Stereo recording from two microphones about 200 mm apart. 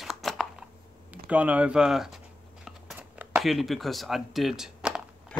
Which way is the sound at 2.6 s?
5° right (ahead or behind).